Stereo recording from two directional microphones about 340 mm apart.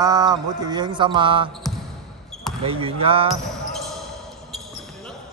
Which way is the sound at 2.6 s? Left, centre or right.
Centre.